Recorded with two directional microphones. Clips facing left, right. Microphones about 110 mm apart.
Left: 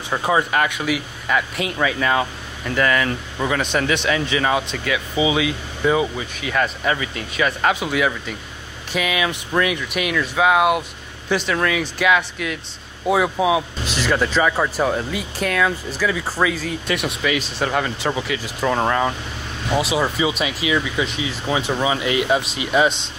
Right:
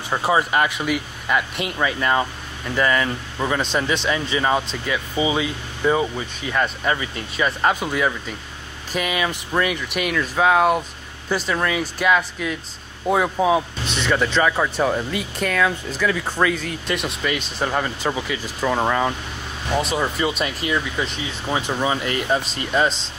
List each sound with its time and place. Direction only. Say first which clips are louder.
0.1 s speech: even; 5° right (ahead or behind)
4.7 s speech: left 2 dB; 15° right (ahead or behind)
5.1 s speech: left 2 dB; 10° left (ahead or behind)
6.5 s speech: left 1 dB; 5° right (ahead or behind)
11.2 s speech: left 2 dB; 5° right (ahead or behind)